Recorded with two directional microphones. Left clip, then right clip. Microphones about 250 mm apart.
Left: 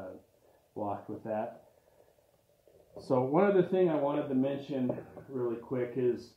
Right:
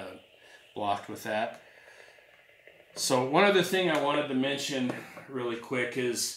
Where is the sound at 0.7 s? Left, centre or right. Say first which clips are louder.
Right 6 dB; right.